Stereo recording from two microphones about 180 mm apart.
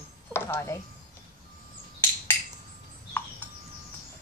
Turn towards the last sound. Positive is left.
turn(degrees=10)  # may be behind; listen again after turning